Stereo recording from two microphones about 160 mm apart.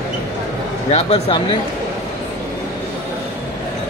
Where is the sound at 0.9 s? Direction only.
40° left (ahead or behind).